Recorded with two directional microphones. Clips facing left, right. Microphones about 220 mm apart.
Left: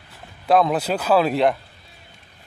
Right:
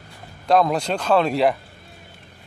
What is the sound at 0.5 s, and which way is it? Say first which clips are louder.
Speech: even; 5° left (ahead or behind).